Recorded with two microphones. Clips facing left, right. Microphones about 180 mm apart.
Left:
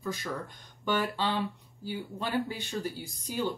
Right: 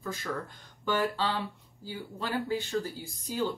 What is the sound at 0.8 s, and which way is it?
Speech, 15° left (ahead or behind).